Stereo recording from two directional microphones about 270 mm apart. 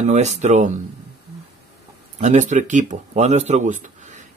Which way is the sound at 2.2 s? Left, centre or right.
Right.